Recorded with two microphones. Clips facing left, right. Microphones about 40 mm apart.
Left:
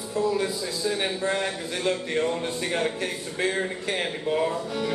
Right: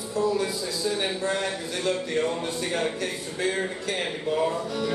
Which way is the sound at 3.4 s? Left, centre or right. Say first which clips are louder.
Even; centre.